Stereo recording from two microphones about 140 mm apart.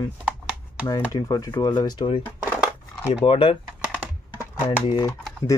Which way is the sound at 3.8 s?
10° right (ahead or behind).